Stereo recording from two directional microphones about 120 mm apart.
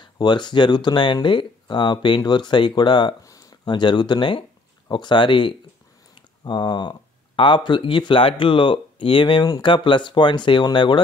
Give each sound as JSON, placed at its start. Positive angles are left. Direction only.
{"t": 0.0, "sound": "speech", "side_deg": 40}